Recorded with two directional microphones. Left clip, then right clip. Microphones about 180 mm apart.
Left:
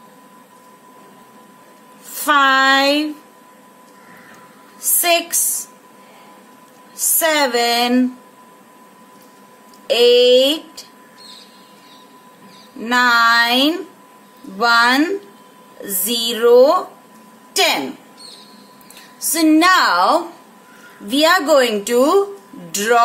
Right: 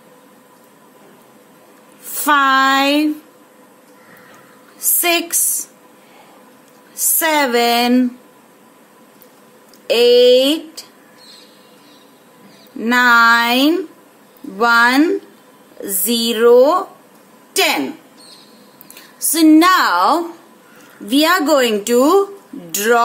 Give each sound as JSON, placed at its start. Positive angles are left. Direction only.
{"t": 2.1, "sound": "a sound", "side_deg": -40}
{"t": 4.8, "sound": "speech", "side_deg": -40}
{"t": 7.0, "sound": "speech", "side_deg": -35}
{"t": 9.8, "sound": "a woman's voice", "side_deg": -35}
{"t": 12.8, "sound": "a woman's voice", "side_deg": -35}
{"t": 18.9, "sound": "a woman's voice", "side_deg": -35}